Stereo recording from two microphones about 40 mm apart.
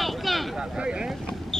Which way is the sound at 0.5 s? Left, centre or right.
Centre.